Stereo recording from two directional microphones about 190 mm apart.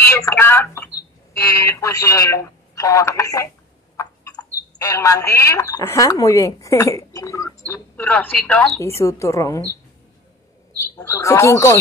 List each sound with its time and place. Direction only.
0.0 s a sound: 15° left (ahead or behind)
1.3 s speech: 15° left (ahead or behind)
11.0 s speech: 15° left (ahead or behind)